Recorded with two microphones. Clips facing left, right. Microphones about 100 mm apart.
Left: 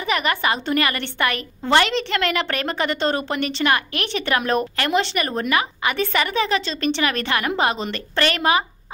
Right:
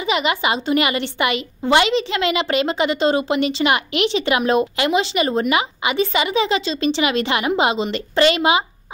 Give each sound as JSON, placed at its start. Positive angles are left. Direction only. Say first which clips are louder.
{"t": 0.0, "sound": "a woman's voice", "louder": "right 2 dB", "side_deg": -15}